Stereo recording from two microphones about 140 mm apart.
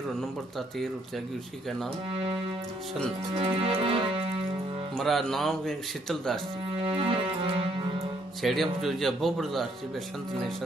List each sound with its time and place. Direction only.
3.3 s music: 40° right (ahead or behind)
4.9 s speech: centre (ahead or behind)
6.8 s music: 40° right (ahead or behind)
8.4 s speech: centre (ahead or behind)